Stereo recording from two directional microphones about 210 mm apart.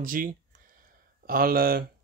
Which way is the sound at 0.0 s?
40° right (ahead or behind).